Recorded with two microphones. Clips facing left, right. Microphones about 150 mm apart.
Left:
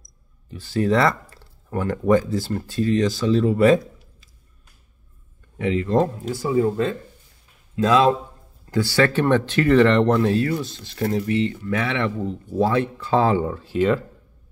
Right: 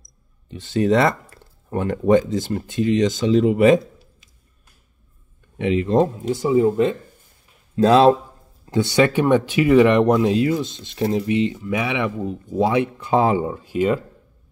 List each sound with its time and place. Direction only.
0.5 s speech: 20° right (ahead or behind)
5.6 s speech: 20° right (ahead or behind)
7.7 s speech: 35° right (ahead or behind)
8.6 s speech: 20° right (ahead or behind)